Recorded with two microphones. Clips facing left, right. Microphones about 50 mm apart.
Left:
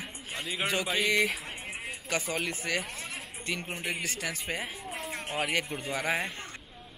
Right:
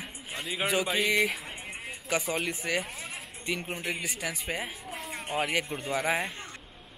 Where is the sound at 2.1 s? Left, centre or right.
Centre.